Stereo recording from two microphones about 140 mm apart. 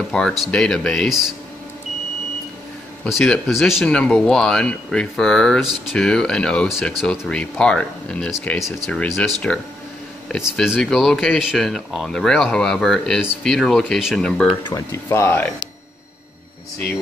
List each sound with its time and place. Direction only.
0.1 s speech: 5° left (ahead or behind)
3.1 s speech: 5° left (ahead or behind)
14.9 s speech: 20° left (ahead or behind)